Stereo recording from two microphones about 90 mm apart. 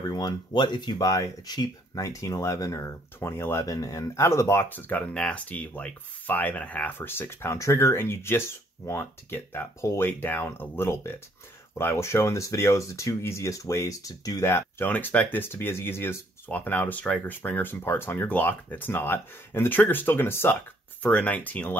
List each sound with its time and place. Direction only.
0.5 s speech: 55° left (ahead or behind); by 14.5 s 40° left (ahead or behind)
14.5 s speech: 25° left (ahead or behind)
21.0 s speech: 15° left (ahead or behind)